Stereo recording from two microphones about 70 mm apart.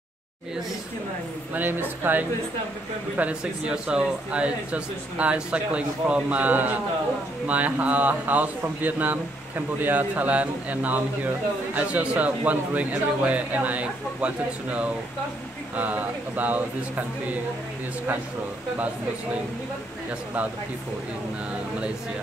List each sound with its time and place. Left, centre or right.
1.5 s a man's voice: right
3.2 s a man's voice: centre